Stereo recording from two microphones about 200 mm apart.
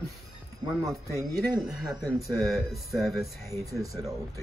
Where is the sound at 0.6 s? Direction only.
Centre (ahead or behind).